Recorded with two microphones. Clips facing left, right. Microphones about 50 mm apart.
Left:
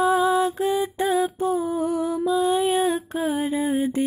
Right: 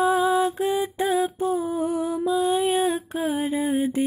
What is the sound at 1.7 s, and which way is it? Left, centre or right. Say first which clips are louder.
Music: left 1 dB; centre.